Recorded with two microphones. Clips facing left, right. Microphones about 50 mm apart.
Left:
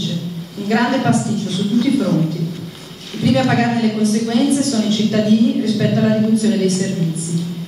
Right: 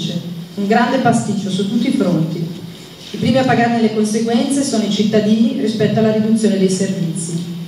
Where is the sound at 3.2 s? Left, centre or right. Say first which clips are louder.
Right 2 dB; centre.